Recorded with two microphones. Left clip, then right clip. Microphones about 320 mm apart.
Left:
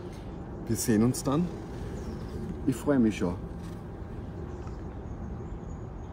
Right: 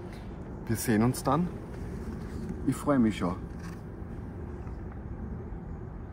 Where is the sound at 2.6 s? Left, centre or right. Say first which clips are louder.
Left 1 dB; centre.